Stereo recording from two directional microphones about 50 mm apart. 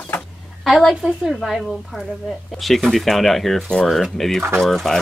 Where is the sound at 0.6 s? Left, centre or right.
Centre.